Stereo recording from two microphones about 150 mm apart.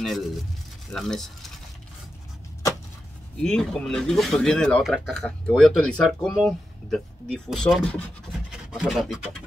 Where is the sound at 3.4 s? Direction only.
5° left (ahead or behind).